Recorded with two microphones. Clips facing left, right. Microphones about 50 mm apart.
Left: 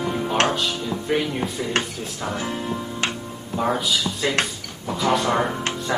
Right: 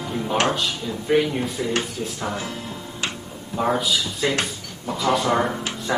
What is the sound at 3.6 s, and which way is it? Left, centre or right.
Speech, centre.